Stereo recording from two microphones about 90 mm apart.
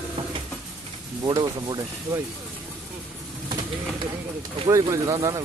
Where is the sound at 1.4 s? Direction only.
55° right (ahead or behind).